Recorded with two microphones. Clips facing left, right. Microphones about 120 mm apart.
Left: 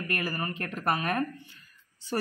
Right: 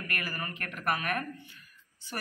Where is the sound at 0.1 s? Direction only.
30° left (ahead or behind).